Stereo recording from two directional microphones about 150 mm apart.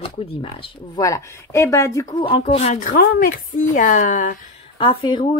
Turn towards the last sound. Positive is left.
turn(degrees=30)  # may be behind; listen again after turning